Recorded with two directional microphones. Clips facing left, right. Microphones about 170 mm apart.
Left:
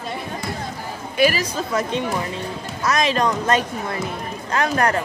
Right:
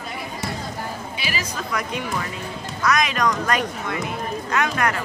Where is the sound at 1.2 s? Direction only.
45° left (ahead or behind).